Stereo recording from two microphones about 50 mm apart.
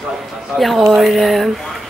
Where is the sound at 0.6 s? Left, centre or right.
Centre.